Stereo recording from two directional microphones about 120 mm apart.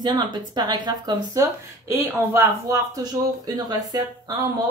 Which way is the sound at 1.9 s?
20° right (ahead or behind).